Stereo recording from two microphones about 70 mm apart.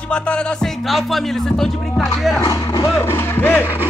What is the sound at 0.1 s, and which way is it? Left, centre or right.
Music, centre.